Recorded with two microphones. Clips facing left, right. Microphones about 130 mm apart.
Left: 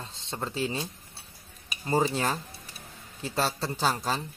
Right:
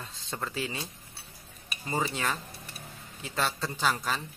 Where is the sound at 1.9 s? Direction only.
35° left (ahead or behind).